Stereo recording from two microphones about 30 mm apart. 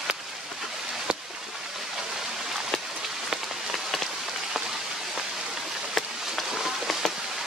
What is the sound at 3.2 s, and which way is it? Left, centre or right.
Rain on surface, centre.